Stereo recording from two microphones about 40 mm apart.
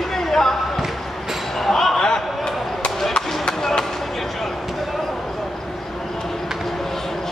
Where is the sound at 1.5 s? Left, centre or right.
Centre.